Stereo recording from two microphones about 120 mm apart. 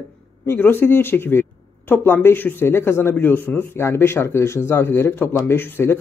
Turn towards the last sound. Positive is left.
turn(degrees=20)  # may be behind; listen again after turning